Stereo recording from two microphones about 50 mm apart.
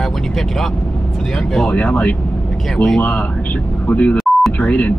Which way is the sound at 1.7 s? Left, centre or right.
Left.